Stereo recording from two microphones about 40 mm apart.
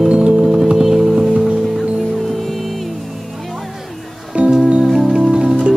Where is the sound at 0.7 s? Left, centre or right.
Centre.